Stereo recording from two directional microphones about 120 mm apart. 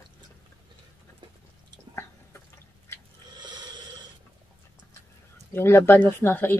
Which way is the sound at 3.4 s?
40° right (ahead or behind).